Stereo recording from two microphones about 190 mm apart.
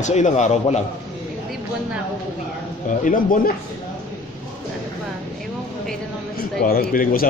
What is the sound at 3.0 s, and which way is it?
Speech, 45° left (ahead or behind).